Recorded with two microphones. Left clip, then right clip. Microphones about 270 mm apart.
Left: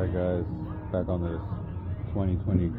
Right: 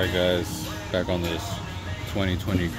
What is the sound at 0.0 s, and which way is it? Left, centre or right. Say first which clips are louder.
Speech: right 6 dB; right.